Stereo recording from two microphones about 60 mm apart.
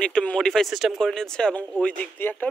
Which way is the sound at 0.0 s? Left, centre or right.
Centre.